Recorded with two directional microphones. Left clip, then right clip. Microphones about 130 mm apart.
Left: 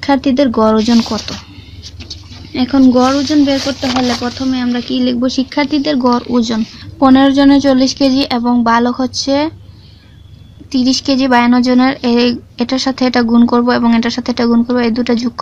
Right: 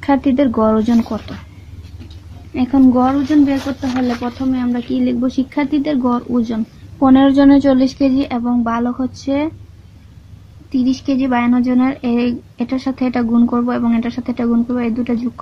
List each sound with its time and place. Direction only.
0.0 s speech: 10° left (ahead or behind)
2.5 s speech: 25° left (ahead or behind)
7.1 s speech: 20° left (ahead or behind)
7.3 s speech: 10° left (ahead or behind)
8.1 s a woman's voice: 30° left (ahead or behind)
8.4 s speech: 45° left (ahead or behind)
9.2 s a woman's voice: 35° left (ahead or behind)
10.7 s a woman's voice: 40° left (ahead or behind)